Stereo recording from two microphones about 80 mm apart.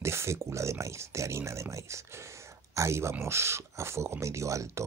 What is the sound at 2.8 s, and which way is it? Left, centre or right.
Speech, right.